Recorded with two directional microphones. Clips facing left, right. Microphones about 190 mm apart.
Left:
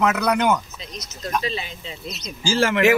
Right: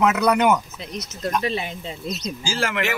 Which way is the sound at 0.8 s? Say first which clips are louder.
Right 5 dB; 60° right (ahead or behind).